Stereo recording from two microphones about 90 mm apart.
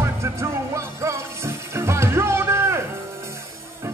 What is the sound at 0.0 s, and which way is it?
Music, 30° right (ahead or behind).